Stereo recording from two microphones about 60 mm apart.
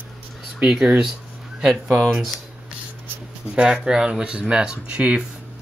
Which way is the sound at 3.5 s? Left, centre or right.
Centre.